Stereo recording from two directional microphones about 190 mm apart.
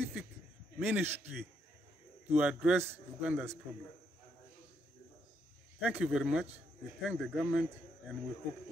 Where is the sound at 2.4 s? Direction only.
5° right (ahead or behind).